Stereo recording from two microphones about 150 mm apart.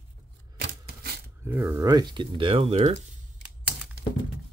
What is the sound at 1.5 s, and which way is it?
Speech, 15° right (ahead or behind).